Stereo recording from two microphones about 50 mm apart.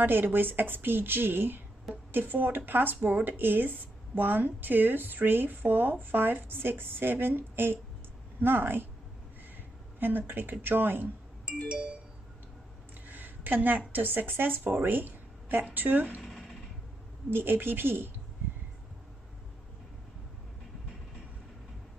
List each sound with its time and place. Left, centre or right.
0.0 s speech: right
9.9 s speech: right
11.7 s music: right
13.1 s a woman's voice: right
16.2 s a sound: centre
17.3 s speech: right